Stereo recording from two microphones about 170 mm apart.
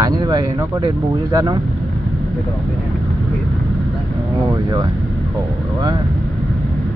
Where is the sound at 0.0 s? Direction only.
25° right (ahead or behind).